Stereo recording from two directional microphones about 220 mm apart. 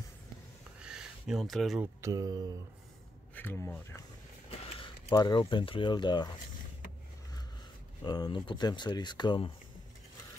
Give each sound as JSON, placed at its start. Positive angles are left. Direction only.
{"t": 0.8, "sound": "a sound", "side_deg": -5}
{"t": 2.0, "sound": "speech", "side_deg": -15}
{"t": 3.3, "sound": "speech", "side_deg": 10}
{"t": 4.5, "sound": "speech", "side_deg": 25}
{"t": 8.0, "sound": "speech", "side_deg": 20}